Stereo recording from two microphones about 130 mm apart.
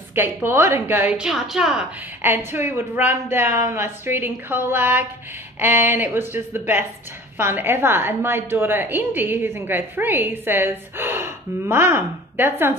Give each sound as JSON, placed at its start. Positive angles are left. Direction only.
{"t": 0.1, "sound": "a woman's voice", "side_deg": -15}
{"t": 2.2, "sound": "a woman's voice", "side_deg": -15}